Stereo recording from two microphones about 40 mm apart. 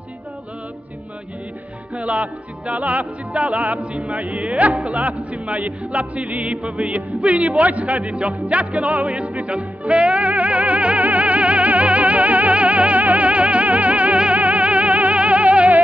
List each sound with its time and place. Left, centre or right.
2.0 s music: right